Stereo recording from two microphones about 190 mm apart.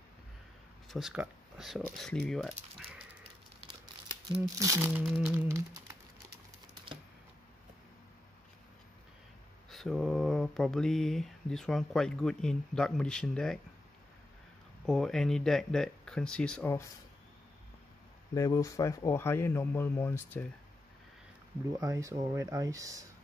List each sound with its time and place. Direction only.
0.8 s speech: centre (ahead or behind)
4.6 s speech: 15° right (ahead or behind)
9.7 s speech: centre (ahead or behind)
14.9 s speech: centre (ahead or behind)
18.3 s a man's voice: 20° left (ahead or behind)
21.7 s speech: 15° right (ahead or behind)